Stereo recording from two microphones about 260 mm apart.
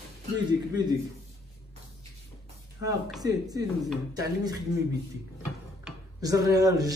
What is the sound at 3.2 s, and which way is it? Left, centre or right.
Speech, centre.